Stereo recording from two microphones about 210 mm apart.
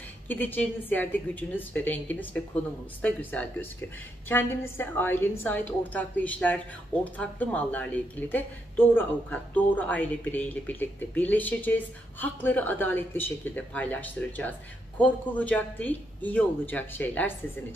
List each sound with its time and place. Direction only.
0.3 s speech: 10° left (ahead or behind)